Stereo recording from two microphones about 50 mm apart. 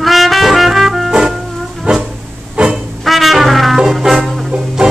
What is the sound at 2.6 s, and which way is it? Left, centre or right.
Music, right.